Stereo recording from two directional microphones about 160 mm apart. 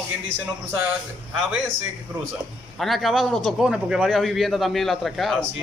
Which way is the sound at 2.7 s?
Centre (ahead or behind).